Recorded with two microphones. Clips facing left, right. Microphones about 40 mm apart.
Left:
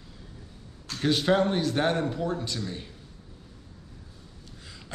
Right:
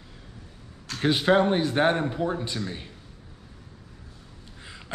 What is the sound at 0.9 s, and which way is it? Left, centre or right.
A man's voice, centre.